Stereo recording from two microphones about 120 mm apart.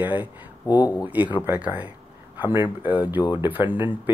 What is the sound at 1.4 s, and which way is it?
Speech, 15° right (ahead or behind).